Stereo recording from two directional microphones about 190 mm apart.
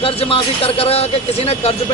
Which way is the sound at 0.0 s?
30° left (ahead or behind).